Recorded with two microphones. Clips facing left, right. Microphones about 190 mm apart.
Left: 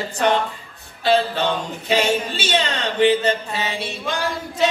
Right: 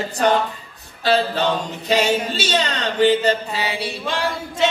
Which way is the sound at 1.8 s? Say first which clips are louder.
Right 1 dB; 40° right (ahead or behind).